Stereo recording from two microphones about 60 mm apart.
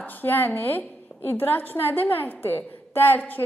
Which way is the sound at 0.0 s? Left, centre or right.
Left.